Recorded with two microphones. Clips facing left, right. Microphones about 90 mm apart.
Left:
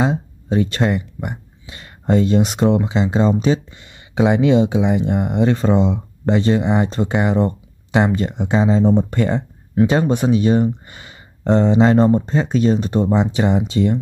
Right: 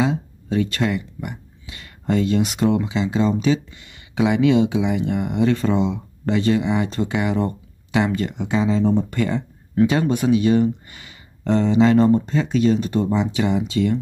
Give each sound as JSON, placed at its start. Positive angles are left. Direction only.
{"t": 0.0, "sound": "speech", "side_deg": 30}